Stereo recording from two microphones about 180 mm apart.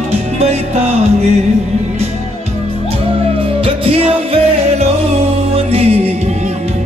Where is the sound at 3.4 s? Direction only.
30° right (ahead or behind).